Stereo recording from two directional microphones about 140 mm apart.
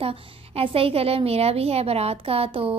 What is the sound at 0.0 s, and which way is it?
A woman's voice, 40° right (ahead or behind).